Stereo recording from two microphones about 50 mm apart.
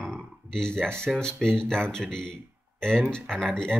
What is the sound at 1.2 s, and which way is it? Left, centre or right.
Speech, centre.